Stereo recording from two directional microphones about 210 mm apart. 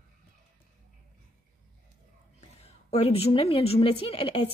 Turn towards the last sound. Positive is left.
turn(degrees=25)  # may be behind; listen again after turning